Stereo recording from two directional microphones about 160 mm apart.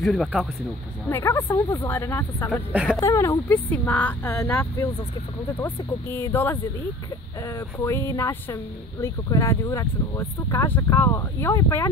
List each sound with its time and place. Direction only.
0.0 s speech: centre (ahead or behind)
1.0 s speech: 15° left (ahead or behind)
2.7 s speech: 10° right (ahead or behind)
3.0 s speech: 20° left (ahead or behind)
7.8 s speech: 15° left (ahead or behind)